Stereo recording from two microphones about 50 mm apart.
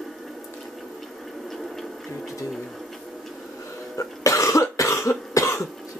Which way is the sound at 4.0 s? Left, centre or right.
Left.